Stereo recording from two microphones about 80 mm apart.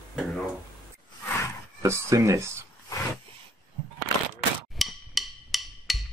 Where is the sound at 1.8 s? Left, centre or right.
Right.